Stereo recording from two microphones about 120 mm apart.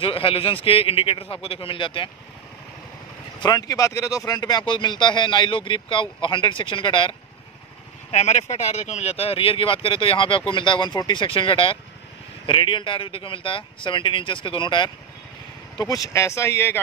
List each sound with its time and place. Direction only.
0.0 s speech: 50° left (ahead or behind)
3.3 s speech: 35° left (ahead or behind)
8.1 s speech: 70° left (ahead or behind); by 16.8 s 20° left (ahead or behind)